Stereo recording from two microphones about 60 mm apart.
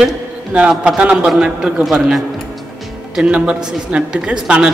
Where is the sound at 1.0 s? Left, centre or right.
Centre.